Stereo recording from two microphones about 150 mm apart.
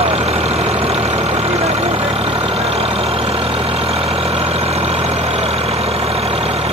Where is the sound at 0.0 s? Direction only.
45° right (ahead or behind).